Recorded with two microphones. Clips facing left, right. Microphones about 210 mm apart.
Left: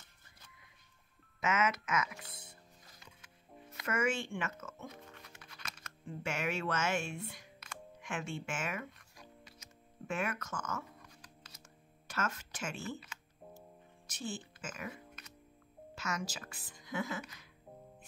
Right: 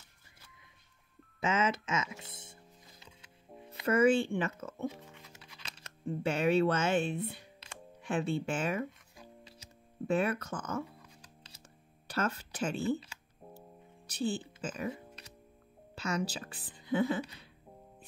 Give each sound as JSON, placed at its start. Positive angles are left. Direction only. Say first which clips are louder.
{"t": 1.4, "sound": "speech", "louder": "right 2 dB", "side_deg": -30}
{"t": 3.8, "sound": "speech", "louder": "right 9 dB", "side_deg": -35}
{"t": 5.8, "sound": "a sound", "louder": "right 10 dB", "side_deg": -30}
{"t": 10.0, "sound": "speech", "louder": "right 7 dB", "side_deg": -35}
{"t": 12.1, "sound": "music", "louder": "right 5 dB", "side_deg": -35}
{"t": 15.9, "sound": "speech", "louder": "right 6 dB", "side_deg": -35}